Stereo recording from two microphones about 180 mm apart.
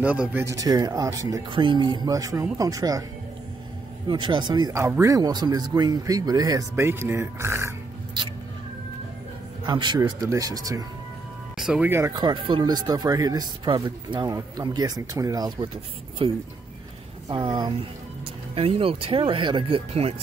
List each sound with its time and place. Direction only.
0.0 s speech: 10° right (ahead or behind)
4.1 s speech: 25° right (ahead or behind)
9.7 s speech: 25° right (ahead or behind)
11.5 s speech: 5° right (ahead or behind); by 20.2 s 35° right (ahead or behind)